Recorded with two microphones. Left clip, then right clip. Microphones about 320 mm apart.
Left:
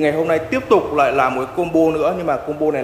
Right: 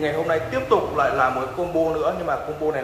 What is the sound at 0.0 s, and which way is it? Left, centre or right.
A man's voice, left.